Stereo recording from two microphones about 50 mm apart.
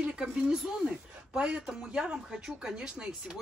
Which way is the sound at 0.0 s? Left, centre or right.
Centre.